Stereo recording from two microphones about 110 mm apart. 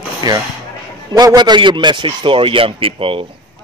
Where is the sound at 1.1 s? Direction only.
35° right (ahead or behind).